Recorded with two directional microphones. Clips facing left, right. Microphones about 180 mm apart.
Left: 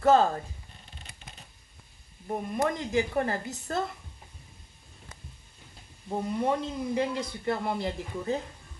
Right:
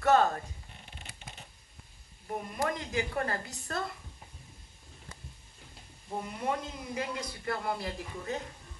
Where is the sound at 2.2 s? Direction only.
25° left (ahead or behind).